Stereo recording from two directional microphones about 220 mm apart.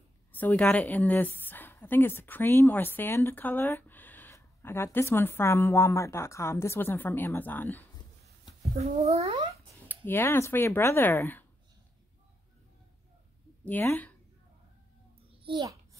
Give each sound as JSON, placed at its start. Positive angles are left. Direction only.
{"t": 0.3, "sound": "a woman's voice", "side_deg": 5}
{"t": 8.9, "sound": "speech", "side_deg": -25}
{"t": 9.8, "sound": "a woman's voice", "side_deg": 10}
{"t": 13.7, "sound": "a woman's voice", "side_deg": 10}
{"t": 15.4, "sound": "babbling", "side_deg": -20}